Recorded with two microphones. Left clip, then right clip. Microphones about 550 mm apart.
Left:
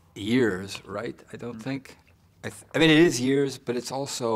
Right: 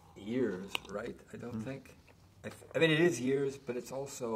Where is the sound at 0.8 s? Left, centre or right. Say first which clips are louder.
Left 8 dB; left.